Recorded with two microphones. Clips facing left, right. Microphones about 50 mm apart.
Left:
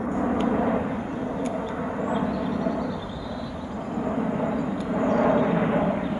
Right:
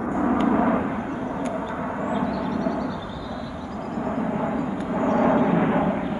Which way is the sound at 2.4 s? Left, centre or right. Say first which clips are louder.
Right 1 dB; centre.